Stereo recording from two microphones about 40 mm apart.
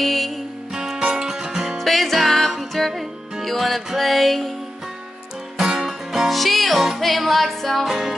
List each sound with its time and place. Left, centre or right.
0.0 s music: centre
0.7 s music: centre
1.8 s music: centre
2.9 s music: centre
5.6 s music: centre